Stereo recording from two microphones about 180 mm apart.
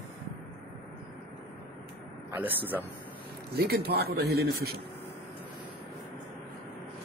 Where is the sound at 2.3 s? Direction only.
10° right (ahead or behind).